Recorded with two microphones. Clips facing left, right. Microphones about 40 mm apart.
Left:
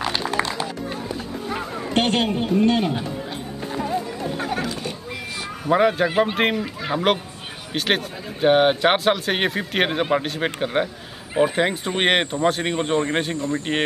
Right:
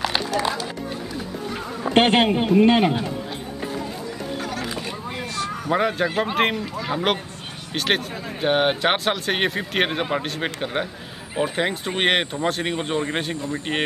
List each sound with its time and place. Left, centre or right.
0.3 s music: left
1.9 s a man's voice: right
4.4 s a sound: left
5.4 s speech: centre
6.6 s a man's voice: centre
7.7 s speech: centre